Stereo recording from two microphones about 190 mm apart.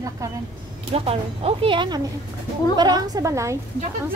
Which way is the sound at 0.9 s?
30° right (ahead or behind).